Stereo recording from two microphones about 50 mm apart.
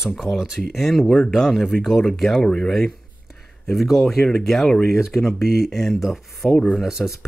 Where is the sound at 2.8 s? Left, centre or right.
Centre.